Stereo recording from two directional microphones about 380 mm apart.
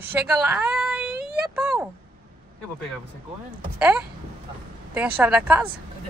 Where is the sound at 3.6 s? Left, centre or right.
Centre.